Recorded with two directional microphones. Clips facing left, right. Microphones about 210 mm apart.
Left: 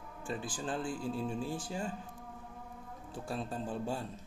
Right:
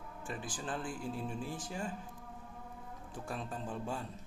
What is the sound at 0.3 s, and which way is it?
Speech, 30° left (ahead or behind).